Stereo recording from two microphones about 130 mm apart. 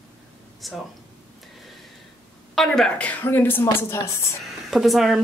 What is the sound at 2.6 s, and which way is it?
Speech, 5° left (ahead or behind).